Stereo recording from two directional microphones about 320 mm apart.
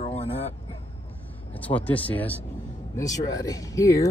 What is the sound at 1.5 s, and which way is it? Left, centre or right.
Speech, centre.